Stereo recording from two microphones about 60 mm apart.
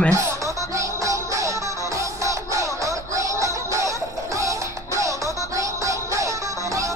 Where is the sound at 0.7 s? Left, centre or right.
Right.